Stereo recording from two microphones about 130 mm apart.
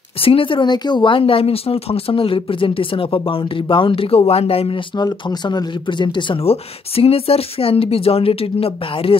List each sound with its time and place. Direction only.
0.2 s speech: 45° left (ahead or behind)
4.9 s speech: 35° left (ahead or behind)